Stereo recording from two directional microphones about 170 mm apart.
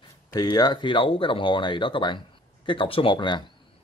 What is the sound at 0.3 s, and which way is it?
Speech, 25° left (ahead or behind).